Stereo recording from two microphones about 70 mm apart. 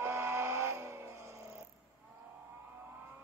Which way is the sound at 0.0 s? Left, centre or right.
Right.